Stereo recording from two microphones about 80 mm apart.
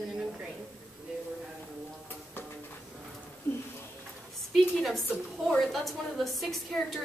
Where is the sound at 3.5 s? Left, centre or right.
Left.